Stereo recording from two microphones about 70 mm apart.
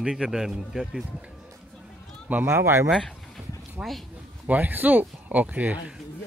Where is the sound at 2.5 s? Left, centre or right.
Right.